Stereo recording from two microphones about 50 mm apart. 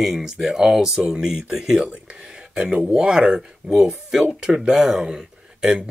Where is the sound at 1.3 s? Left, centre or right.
Centre.